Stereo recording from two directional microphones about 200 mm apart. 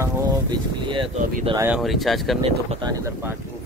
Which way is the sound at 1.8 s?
Centre (ahead or behind).